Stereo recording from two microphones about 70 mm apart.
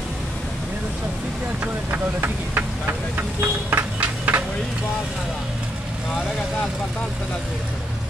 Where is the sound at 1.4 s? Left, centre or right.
Right.